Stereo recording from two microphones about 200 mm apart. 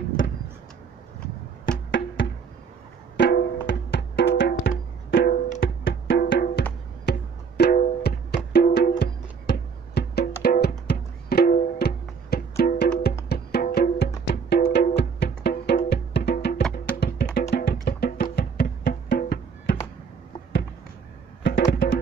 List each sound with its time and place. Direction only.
1.9 s music: 65° left (ahead or behind)
3.2 s music: 50° left (ahead or behind)
5.6 s music: 65° left (ahead or behind)
21.4 s music: 55° left (ahead or behind)